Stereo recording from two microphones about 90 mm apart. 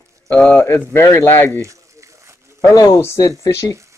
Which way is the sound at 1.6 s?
35° right (ahead or behind).